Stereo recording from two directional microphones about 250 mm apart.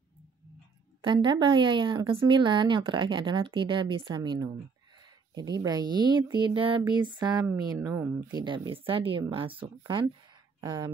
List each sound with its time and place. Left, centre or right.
1.0 s speech: centre